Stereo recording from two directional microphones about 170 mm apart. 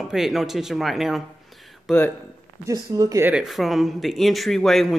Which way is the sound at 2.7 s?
20° right (ahead or behind).